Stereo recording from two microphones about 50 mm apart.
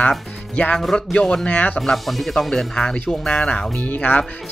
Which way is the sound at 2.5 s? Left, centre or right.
Centre.